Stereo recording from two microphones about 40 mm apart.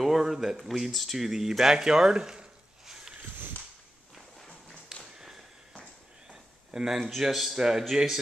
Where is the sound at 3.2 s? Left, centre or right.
Right.